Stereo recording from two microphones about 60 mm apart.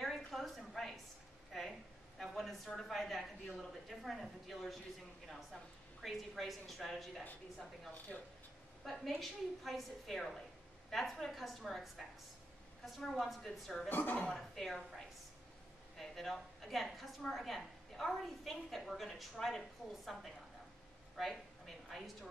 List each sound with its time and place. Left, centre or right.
0.3 s a woman's voice: centre
13.8 s speech: left
14.2 s a woman's voice: centre
21.2 s a woman's voice: centre